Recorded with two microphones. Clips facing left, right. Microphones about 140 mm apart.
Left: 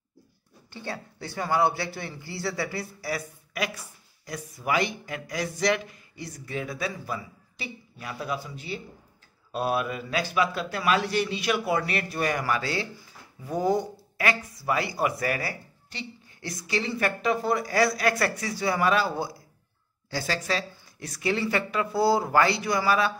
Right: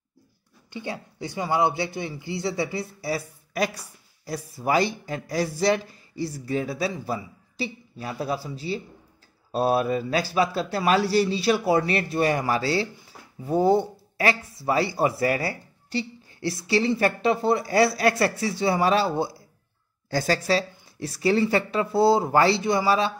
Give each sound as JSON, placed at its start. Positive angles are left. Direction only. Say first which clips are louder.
{"t": 0.7, "sound": "a man's voice", "louder": "right 3 dB", "side_deg": -15}
{"t": 20.1, "sound": "speech", "louder": "right 6 dB", "side_deg": -45}
{"t": 20.4, "sound": "speech", "louder": "right 6 dB", "side_deg": -30}